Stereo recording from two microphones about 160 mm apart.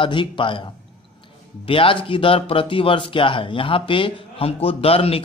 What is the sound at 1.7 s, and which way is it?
Speech, 35° left (ahead or behind).